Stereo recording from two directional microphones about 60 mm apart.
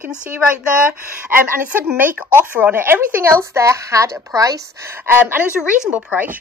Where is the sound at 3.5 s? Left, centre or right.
Right.